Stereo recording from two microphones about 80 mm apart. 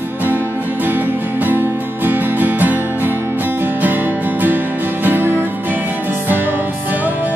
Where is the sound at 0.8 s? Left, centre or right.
Right.